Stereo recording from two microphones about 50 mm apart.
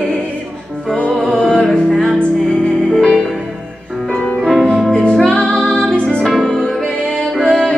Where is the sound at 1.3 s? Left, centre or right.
Centre.